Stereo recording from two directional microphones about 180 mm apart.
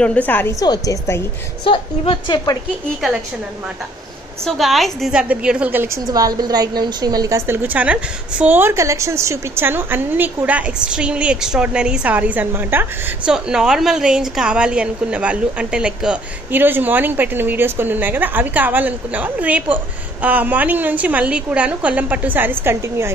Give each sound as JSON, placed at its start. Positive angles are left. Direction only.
{"t": 0.0, "sound": "a woman's voice", "side_deg": 10}
{"t": 1.6, "sound": "a woman's voice", "side_deg": 30}
{"t": 4.5, "sound": "a woman's voice", "side_deg": 0}